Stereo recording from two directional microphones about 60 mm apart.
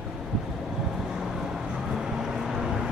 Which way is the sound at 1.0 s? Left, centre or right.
Centre.